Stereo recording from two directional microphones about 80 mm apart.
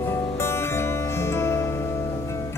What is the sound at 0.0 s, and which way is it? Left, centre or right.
Music, left.